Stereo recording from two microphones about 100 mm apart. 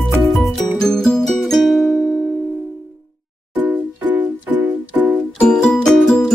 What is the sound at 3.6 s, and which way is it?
Music, 15° right (ahead or behind).